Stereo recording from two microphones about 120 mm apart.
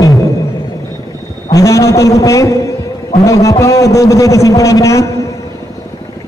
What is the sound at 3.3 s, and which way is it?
A man's voice, 25° left (ahead or behind).